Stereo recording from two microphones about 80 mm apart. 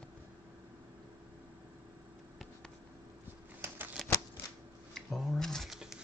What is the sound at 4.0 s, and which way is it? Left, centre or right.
Typewriter, centre.